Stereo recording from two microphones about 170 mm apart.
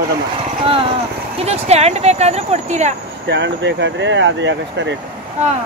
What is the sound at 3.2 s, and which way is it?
Speech, 90° right.